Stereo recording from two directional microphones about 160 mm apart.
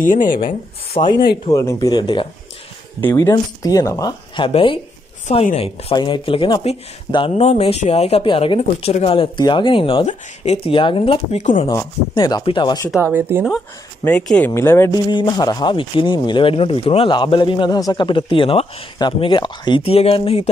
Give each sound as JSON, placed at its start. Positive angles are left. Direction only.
{"t": 0.0, "sound": "speech", "side_deg": 55}
{"t": 0.4, "sound": "speech", "side_deg": 35}
{"t": 1.5, "sound": "speech", "side_deg": 20}
{"t": 3.0, "sound": "speech", "side_deg": 15}
{"t": 4.5, "sound": "speech", "side_deg": 35}
{"t": 10.0, "sound": "speech", "side_deg": 45}
{"t": 13.0, "sound": "speech", "side_deg": -15}
{"t": 14.0, "sound": "speech", "side_deg": 5}
{"t": 15.0, "sound": "speech", "side_deg": 30}